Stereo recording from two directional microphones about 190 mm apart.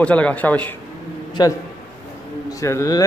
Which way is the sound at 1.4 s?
20° left (ahead or behind).